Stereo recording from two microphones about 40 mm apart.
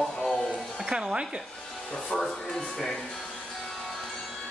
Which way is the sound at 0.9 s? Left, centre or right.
Centre.